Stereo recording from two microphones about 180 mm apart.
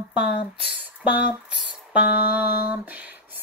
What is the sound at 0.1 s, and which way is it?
Speech, 70° left (ahead or behind).